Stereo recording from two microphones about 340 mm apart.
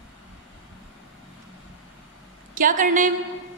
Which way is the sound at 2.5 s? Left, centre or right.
Right.